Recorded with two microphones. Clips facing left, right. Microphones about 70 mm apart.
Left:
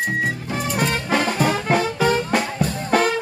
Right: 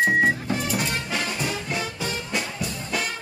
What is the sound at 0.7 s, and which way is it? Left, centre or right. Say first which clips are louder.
Music: left 6 dB; left.